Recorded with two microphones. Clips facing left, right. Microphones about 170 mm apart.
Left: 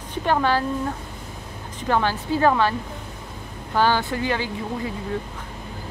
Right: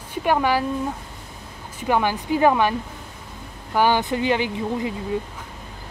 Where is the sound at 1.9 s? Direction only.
15° right (ahead or behind).